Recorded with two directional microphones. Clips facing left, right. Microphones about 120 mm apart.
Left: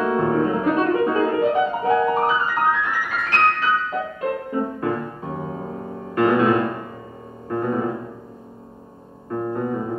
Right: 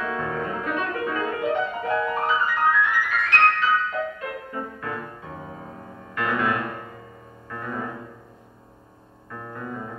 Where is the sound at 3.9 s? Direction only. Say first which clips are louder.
Left 4 dB; 30° left (ahead or behind).